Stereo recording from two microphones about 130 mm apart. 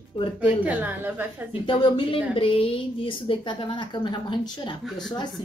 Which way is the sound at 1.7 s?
45° left (ahead or behind).